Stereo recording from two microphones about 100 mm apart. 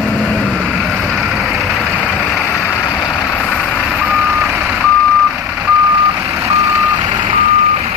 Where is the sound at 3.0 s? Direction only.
10° left (ahead or behind).